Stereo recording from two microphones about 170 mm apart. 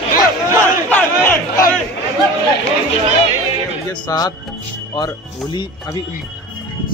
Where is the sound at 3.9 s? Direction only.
25° left (ahead or behind).